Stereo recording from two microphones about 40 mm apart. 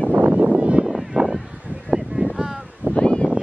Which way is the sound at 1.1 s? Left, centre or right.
Centre.